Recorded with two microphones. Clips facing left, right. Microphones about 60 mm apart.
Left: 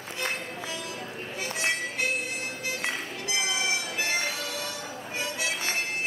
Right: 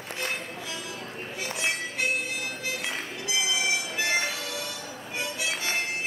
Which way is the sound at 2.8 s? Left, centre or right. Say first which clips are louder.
Left 1 dB; left.